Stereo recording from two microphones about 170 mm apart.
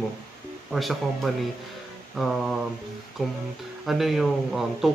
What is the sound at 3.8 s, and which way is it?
Speech, centre (ahead or behind).